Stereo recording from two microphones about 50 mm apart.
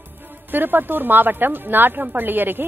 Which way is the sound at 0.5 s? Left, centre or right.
Right.